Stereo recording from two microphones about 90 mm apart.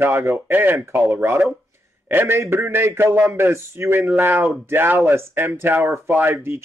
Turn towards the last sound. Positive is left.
turn(degrees=-25)  # may be behind; listen again after turning